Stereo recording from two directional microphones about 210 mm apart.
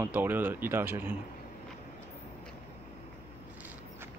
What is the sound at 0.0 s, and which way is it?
A man's voice, 10° right (ahead or behind).